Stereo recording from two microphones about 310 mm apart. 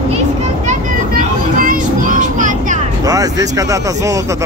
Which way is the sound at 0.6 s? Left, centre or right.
Right.